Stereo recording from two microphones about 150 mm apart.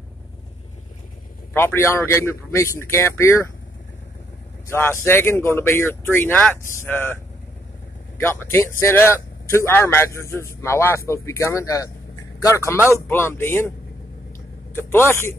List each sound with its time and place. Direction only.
1.5 s speech: 15° left (ahead or behind)
4.6 s speech: 15° left (ahead or behind)
8.2 s speech: 15° left (ahead or behind)
12.7 s speech: 15° right (ahead or behind)
13.1 s speech: 15° left (ahead or behind)
14.7 s speech: 15° left (ahead or behind)